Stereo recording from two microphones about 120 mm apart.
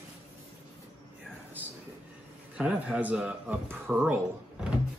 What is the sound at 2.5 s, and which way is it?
Speech, 10° right (ahead or behind).